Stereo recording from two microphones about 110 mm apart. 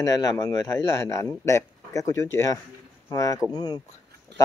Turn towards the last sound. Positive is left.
turn(degrees=40)  # may be behind; listen again after turning